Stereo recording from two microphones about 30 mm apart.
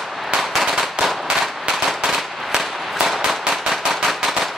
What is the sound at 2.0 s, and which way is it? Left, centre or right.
Gunshot, centre.